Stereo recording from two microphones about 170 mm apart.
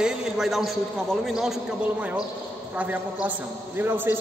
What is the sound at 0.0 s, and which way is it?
A man's voice, 5° right (ahead or behind).